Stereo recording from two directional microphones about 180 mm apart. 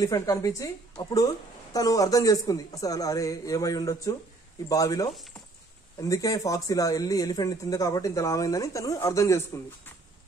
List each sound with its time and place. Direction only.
0.0 s a woman's voice: 20° left (ahead or behind)